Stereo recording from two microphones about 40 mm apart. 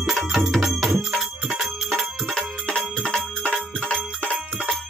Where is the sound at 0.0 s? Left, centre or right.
Centre.